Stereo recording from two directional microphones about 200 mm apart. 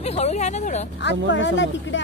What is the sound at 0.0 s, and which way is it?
Speech, 30° left (ahead or behind).